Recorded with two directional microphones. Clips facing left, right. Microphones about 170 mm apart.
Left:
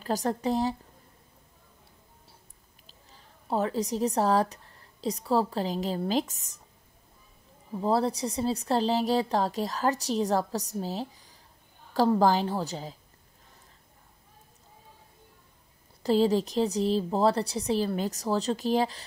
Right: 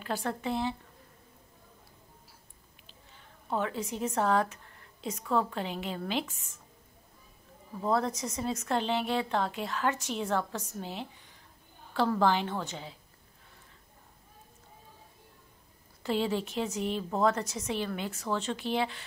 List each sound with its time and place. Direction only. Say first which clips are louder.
0.0 s speech: left 5 dB; 40° left (ahead or behind)
2.9 s speech: left 1 dB; 35° left (ahead or behind)
7.8 s speech: left 3 dB; 35° left (ahead or behind)
16.0 s speech: left 7 dB; 35° left (ahead or behind)